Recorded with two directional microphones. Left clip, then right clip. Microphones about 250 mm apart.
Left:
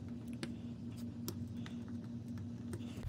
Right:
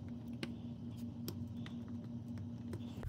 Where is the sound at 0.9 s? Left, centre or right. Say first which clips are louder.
Left 1 dB; centre.